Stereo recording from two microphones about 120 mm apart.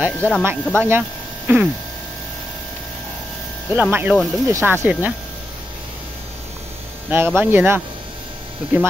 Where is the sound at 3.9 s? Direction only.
15° right (ahead or behind).